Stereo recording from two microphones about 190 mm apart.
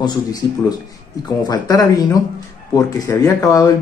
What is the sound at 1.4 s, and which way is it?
Speech, 20° left (ahead or behind).